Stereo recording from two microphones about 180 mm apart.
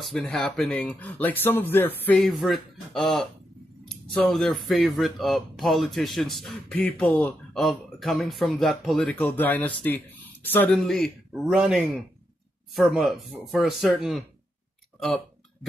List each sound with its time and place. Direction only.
0.0 s speech: centre (ahead or behind)